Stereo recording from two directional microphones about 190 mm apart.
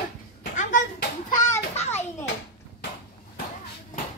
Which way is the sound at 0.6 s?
40° left (ahead or behind).